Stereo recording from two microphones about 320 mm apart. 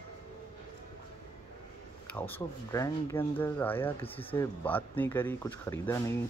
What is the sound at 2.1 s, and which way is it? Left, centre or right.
Speech, centre.